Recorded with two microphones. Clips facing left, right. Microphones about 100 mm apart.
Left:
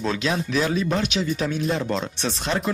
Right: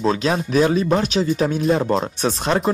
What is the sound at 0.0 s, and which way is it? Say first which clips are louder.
Speech: right 5 dB; 35° right (ahead or behind).